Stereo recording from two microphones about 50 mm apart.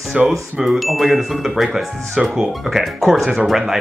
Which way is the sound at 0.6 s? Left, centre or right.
Centre.